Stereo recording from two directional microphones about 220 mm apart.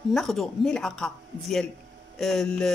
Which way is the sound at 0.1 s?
Centre (ahead or behind).